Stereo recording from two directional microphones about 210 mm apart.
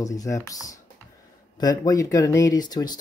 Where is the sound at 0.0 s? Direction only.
15° left (ahead or behind).